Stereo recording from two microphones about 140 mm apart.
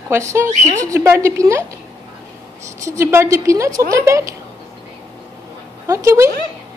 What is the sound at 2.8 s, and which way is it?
A woman's voice, 20° right (ahead or behind).